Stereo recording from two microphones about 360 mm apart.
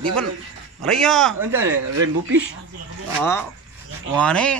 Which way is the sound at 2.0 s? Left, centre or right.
Right.